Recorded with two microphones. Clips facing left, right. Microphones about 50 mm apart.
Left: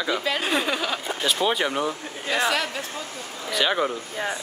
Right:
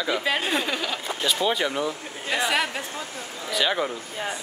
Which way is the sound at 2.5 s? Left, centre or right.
Centre.